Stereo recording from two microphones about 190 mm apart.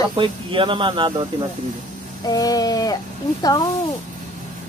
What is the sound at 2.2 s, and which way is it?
Speech, 20° left (ahead or behind).